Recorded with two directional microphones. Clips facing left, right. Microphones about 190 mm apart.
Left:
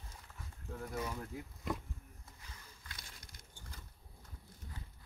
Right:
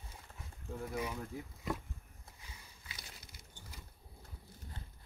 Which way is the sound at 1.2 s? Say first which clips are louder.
Right 1 dB; centre (ahead or behind).